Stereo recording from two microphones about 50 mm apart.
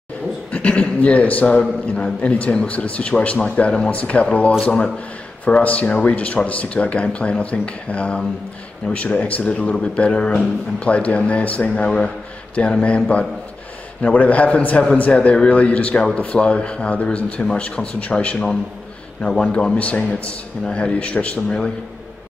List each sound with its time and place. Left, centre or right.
0.5 s speech: left